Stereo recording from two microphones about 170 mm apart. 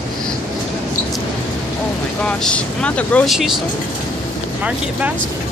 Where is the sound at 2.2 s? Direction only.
5° left (ahead or behind).